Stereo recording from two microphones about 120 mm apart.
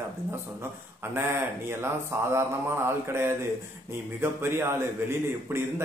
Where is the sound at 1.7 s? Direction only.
20° right (ahead or behind).